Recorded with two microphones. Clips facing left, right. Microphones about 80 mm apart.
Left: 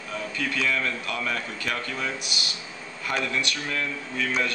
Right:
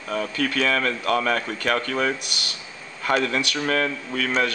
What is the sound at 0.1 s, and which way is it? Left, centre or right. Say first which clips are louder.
Speech: right 6 dB; right.